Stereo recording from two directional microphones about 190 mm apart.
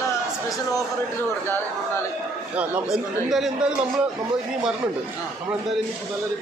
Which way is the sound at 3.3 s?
Centre (ahead or behind).